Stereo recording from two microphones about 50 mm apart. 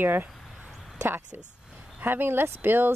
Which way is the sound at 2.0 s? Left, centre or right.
Right.